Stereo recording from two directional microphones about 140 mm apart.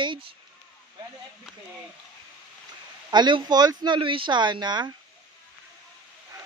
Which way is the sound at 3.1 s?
30° right (ahead or behind).